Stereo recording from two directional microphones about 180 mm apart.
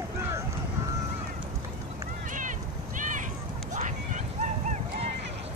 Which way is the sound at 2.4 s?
45° right (ahead or behind).